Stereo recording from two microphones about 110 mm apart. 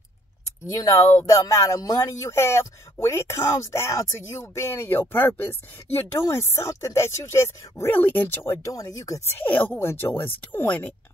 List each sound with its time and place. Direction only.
0.9 s speech: 25° left (ahead or behind)
9.4 s speech: 15° left (ahead or behind)